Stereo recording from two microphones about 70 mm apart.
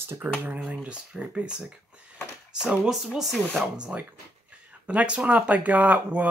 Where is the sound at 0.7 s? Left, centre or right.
Centre.